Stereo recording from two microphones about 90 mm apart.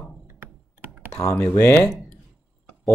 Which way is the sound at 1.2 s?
35° left (ahead or behind).